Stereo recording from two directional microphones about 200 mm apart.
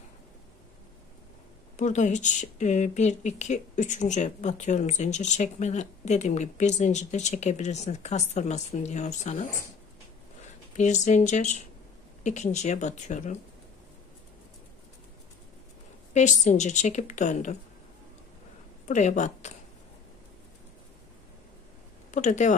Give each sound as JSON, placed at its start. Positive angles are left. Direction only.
{"t": 1.8, "sound": "speech", "side_deg": 35}
{"t": 10.8, "sound": "speech", "side_deg": 35}
{"t": 16.1, "sound": "a woman's voice", "side_deg": 35}
{"t": 18.9, "sound": "speech", "side_deg": 35}
{"t": 22.1, "sound": "speech", "side_deg": 35}